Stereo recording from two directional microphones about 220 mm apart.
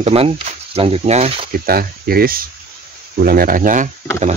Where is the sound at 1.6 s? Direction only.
45° right (ahead or behind).